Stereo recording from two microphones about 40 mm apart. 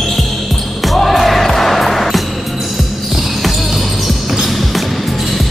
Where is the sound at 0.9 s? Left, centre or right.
Centre.